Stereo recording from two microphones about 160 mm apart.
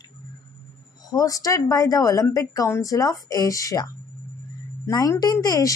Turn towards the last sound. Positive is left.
turn(degrees=20)  # may be behind; listen again after turning